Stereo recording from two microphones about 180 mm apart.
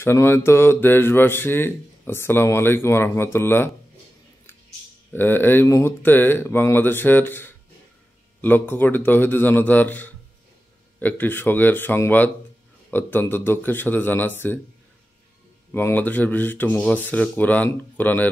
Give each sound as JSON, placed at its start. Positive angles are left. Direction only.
{"t": 0.0, "sound": "speech", "side_deg": 15}
{"t": 5.1, "sound": "speech", "side_deg": 10}
{"t": 15.7, "sound": "speech", "side_deg": 10}